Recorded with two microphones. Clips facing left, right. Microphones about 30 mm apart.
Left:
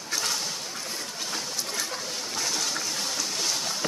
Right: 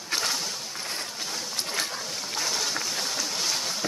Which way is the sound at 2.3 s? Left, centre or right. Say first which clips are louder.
Right 1 dB; centre.